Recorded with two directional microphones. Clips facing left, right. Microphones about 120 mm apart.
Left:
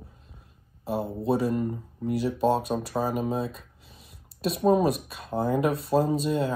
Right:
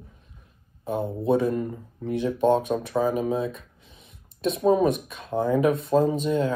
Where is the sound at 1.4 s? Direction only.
25° left (ahead or behind).